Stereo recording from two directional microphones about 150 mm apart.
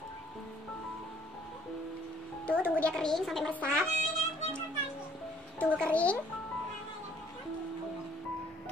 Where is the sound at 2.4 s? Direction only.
10° left (ahead or behind).